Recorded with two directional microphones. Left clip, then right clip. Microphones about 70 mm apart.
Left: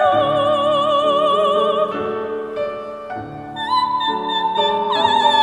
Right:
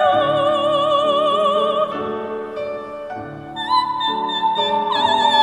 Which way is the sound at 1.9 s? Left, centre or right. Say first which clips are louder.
Left 2 dB; left.